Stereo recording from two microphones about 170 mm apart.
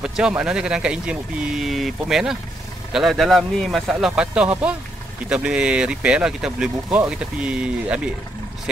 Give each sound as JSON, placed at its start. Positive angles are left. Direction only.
{"t": 0.0, "sound": "speech", "side_deg": -5}